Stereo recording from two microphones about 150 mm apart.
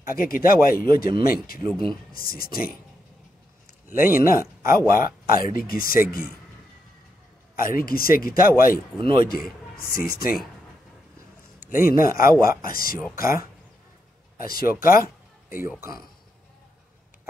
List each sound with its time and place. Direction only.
0.0 s speech: 75° left (ahead or behind)
4.2 s speech: 70° left (ahead or behind)
7.5 s speech: 70° left (ahead or behind)
11.7 s speech: 70° left (ahead or behind)
14.4 s speech: 75° left (ahead or behind)